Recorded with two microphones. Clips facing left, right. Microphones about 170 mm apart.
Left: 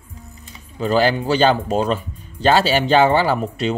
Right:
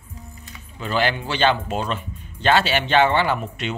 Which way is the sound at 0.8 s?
40° left (ahead or behind).